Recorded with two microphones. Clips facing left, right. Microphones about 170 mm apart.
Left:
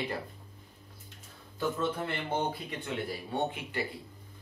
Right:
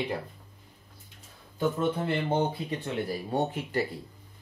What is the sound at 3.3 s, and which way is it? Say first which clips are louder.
Speech: right 4 dB; 40° right (ahead or behind).